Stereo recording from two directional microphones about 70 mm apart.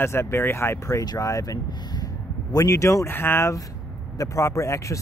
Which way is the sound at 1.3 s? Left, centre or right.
Left.